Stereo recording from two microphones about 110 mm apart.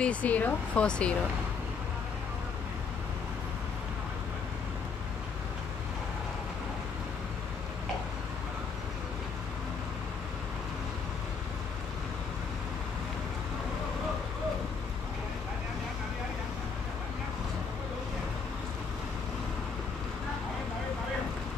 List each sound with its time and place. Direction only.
0.0 s speech: 15° left (ahead or behind)